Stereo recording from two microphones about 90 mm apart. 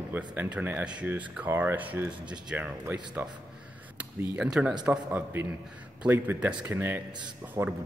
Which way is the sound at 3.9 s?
25° right (ahead or behind).